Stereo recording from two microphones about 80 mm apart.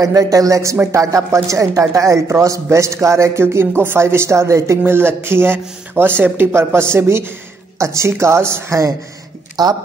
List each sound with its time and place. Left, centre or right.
0.0 s speech: right
9.6 s speech: right